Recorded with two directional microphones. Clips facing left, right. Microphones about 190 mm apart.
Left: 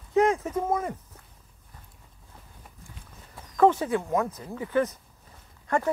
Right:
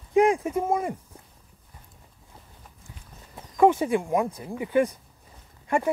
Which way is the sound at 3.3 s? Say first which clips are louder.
Right 1 dB; 15° right (ahead or behind).